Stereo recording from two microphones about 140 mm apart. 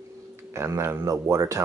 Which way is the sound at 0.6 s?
20° right (ahead or behind).